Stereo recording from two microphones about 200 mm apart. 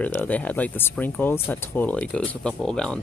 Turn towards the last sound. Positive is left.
turn(degrees=5)  # may be behind; listen again after turning